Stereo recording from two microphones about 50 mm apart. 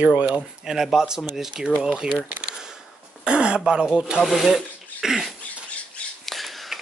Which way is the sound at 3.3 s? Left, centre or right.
Centre.